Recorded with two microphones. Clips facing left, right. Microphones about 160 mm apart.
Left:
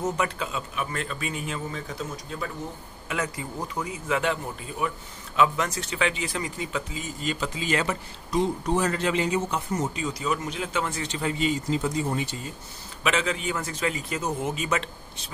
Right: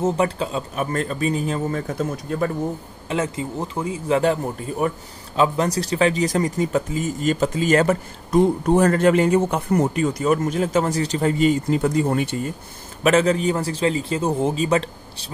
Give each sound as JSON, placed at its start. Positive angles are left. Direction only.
{"t": 0.0, "sound": "a man's voice", "side_deg": -30}
{"t": 1.7, "sound": "speech", "side_deg": -50}
{"t": 3.1, "sound": "speech", "side_deg": -25}
{"t": 13.0, "sound": "a man's voice", "side_deg": -40}